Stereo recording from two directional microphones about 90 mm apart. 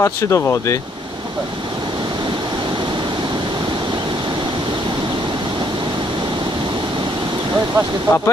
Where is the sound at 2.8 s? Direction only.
55° right (ahead or behind).